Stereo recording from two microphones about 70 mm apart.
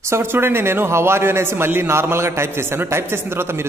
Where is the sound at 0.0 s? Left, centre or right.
Right.